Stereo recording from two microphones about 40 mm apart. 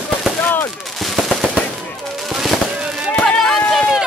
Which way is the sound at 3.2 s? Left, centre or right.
Centre.